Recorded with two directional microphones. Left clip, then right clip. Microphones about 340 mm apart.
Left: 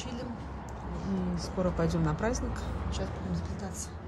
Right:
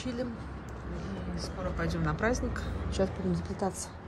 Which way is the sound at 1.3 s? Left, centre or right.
Left.